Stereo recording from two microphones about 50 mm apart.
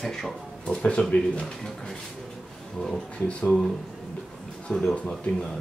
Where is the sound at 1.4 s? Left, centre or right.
Centre.